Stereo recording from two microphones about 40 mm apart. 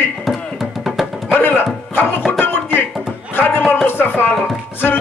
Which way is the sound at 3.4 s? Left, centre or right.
Left.